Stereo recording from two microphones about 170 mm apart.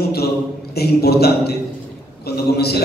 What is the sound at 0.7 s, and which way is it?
A man's voice, 70° left (ahead or behind).